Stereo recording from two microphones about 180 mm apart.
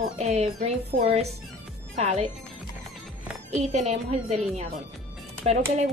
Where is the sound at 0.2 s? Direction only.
40° right (ahead or behind).